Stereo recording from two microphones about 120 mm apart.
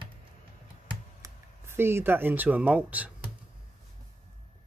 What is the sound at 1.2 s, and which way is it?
Speech, 20° right (ahead or behind).